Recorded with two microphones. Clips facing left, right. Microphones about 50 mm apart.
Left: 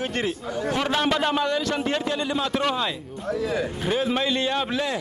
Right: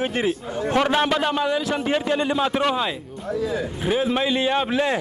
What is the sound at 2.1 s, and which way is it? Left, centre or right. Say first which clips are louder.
A man's voice: right 4 dB; right.